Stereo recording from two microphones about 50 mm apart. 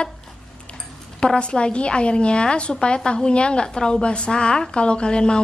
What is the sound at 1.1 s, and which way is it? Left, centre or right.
A woman's voice, centre.